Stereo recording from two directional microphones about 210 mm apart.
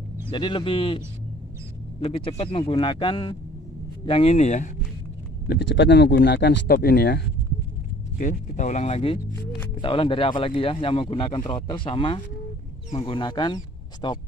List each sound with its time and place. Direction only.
0.3 s speech: 25° left (ahead or behind)
5.5 s speech: 55° left (ahead or behind)
8.2 s speech: 35° left (ahead or behind)